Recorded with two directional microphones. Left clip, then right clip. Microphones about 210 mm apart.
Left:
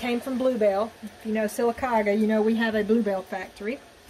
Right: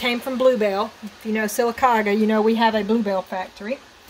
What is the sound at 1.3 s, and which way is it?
Speech, 50° right (ahead or behind).